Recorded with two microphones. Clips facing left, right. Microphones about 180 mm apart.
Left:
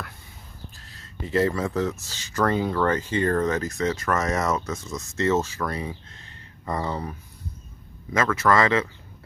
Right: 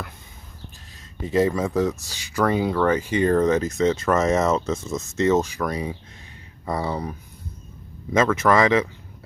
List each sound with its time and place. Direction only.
1.2 s speech: 15° right (ahead or behind)